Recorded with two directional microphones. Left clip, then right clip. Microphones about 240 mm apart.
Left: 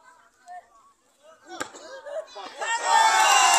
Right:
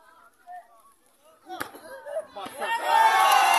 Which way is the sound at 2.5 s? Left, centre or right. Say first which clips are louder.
Left 1 dB; left.